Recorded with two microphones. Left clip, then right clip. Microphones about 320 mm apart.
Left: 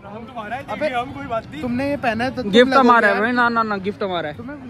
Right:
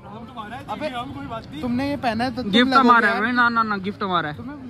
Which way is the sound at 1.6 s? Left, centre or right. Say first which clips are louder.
Left 1 dB; right.